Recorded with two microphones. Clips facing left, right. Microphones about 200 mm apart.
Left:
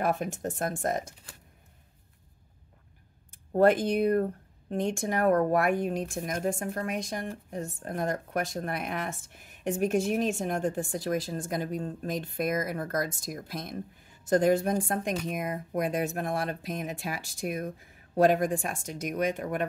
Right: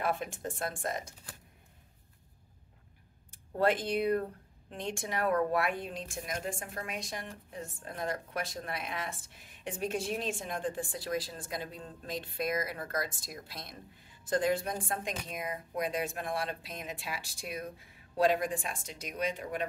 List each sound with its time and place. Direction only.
0.0 s speech: 45° left (ahead or behind)
3.5 s speech: 50° left (ahead or behind)